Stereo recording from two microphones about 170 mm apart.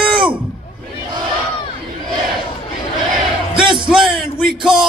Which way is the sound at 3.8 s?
30° right (ahead or behind).